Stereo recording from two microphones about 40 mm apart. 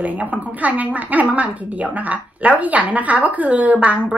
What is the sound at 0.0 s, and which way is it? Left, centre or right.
A woman's voice, right.